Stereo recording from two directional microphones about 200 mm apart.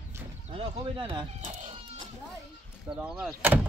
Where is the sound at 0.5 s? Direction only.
25° right (ahead or behind).